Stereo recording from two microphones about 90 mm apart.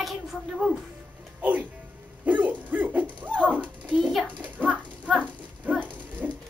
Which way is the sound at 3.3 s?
15° right (ahead or behind).